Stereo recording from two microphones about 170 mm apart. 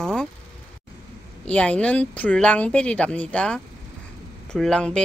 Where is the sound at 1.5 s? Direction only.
5° left (ahead or behind).